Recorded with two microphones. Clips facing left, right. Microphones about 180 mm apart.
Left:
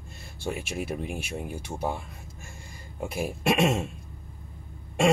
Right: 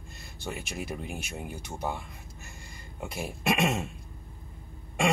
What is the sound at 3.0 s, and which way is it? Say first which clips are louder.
Speech: left 5 dB; 10° left (ahead or behind).